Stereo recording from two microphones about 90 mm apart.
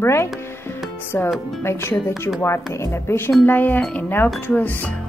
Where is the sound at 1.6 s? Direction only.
25° left (ahead or behind).